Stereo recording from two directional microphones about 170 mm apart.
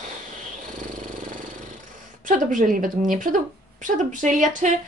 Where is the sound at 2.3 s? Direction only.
50° right (ahead or behind).